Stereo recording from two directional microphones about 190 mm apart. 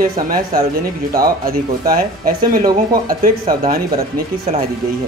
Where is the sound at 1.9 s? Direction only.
50° right (ahead or behind).